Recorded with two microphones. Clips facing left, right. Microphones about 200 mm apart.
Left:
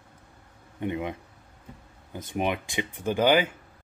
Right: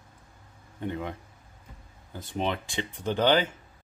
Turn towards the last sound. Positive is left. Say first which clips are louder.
# left 2 dB
turn(degrees=10)  # may be behind; listen again after turning